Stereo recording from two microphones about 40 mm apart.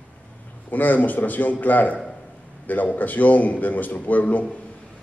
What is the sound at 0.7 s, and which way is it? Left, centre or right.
Speech, left.